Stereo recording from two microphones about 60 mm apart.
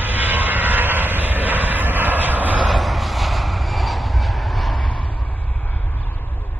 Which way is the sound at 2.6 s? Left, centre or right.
Centre.